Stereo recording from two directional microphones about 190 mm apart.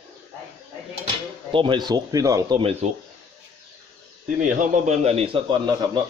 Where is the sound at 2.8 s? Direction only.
35° right (ahead or behind).